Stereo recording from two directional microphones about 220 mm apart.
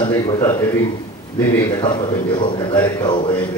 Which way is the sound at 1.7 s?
20° left (ahead or behind).